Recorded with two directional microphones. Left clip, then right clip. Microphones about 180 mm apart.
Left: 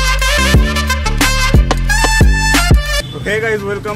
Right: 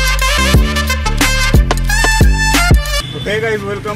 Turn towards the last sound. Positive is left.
turn(degrees=0)  # may be behind; listen again after turning